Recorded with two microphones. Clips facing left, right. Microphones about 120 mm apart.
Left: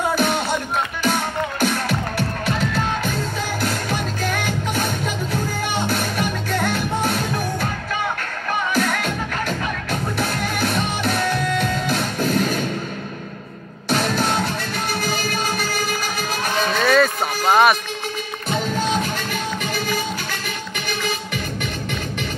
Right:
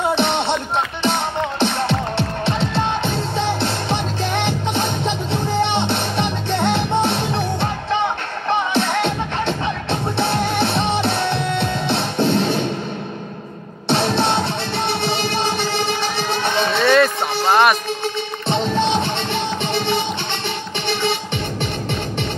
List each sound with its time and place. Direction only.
0.1 s music: 25° right (ahead or behind)
13.8 s music: 30° right (ahead or behind)
16.8 s music: centre (ahead or behind)
17.5 s a sound: centre (ahead or behind)
18.5 s music: 30° right (ahead or behind)